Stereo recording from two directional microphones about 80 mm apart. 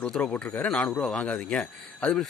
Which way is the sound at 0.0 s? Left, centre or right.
Centre.